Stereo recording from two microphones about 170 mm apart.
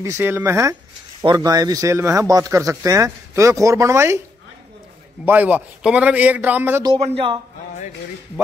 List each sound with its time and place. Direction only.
0.2 s a man's voice: 15° right (ahead or behind)
5.2 s a man's voice: 10° right (ahead or behind)
7.0 s a man's voice: 35° right (ahead or behind)